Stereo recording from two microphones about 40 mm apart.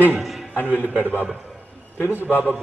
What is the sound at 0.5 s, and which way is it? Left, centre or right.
Speech, left.